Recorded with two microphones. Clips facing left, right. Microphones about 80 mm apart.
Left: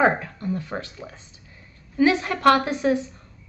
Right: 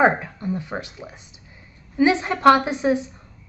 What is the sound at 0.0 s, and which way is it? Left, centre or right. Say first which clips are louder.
A woman's voice: right 2 dB; centre.